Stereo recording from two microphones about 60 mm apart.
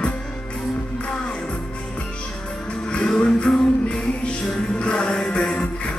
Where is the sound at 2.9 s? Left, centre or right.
Centre.